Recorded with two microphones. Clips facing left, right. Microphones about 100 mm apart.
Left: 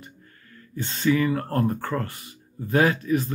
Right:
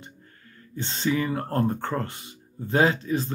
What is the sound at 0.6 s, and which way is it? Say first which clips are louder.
Speech: left 1 dB; 25° right (ahead or behind).